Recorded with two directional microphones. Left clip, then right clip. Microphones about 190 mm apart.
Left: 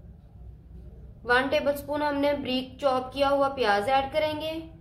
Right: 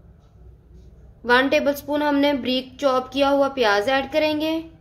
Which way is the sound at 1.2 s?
35° right (ahead or behind).